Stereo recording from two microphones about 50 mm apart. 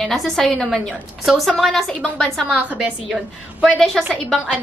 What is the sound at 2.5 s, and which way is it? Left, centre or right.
Speech, right.